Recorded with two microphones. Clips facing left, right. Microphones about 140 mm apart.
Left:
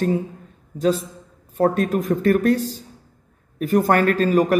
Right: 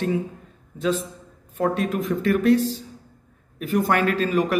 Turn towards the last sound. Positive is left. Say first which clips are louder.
# left 4 dB
turn(degrees=40)  # may be behind; listen again after turning